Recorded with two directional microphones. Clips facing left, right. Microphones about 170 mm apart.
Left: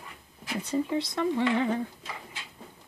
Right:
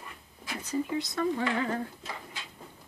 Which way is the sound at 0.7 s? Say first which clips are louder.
Left 2 dB; 25° left (ahead or behind).